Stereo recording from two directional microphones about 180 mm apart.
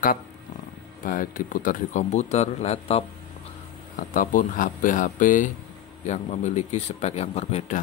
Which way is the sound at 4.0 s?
45° left (ahead or behind).